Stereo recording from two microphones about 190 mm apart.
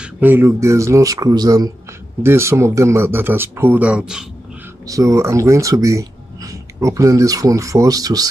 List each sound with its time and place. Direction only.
0.0 s speech: 10° right (ahead or behind)
4.8 s speech: 15° right (ahead or behind)